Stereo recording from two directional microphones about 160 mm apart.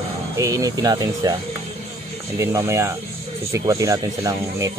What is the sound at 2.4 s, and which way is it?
Speech, 20° right (ahead or behind).